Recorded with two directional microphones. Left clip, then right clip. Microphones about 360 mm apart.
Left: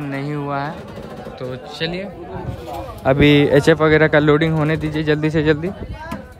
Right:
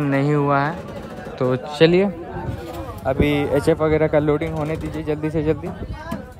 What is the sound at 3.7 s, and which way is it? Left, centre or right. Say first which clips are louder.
Speech: left 4 dB; right.